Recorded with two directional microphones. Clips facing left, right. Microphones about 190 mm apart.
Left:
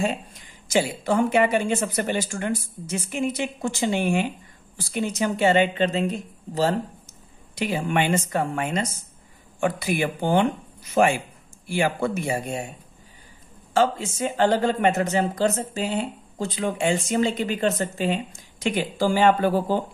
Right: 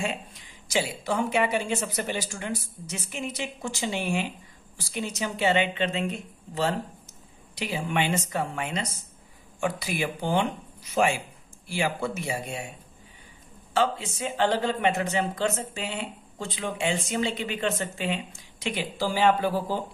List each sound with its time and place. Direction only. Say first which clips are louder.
0.0 s speech: left 6 dB; 40° left (ahead or behind)
7.5 s speech: left 5 dB; 50° left (ahead or behind)
13.7 s speech: left 4 dB; 45° left (ahead or behind)